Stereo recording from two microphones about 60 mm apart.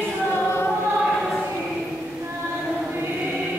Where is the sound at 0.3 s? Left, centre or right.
Left.